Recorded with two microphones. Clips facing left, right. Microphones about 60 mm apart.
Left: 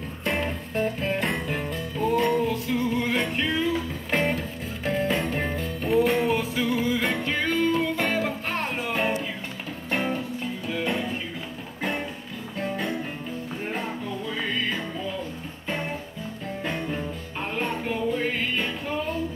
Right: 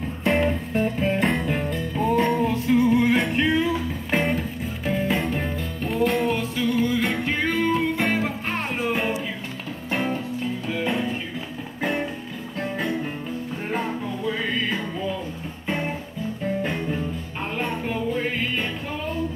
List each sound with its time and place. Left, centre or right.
0.2 s music: centre
2.3 s music: centre
2.8 s music: centre
12.5 s music: centre
13.7 s music: centre